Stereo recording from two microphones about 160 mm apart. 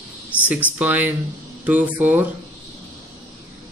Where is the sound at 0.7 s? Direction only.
10° right (ahead or behind).